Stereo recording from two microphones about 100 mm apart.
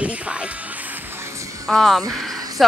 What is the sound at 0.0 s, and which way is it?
Speech, 10° right (ahead or behind).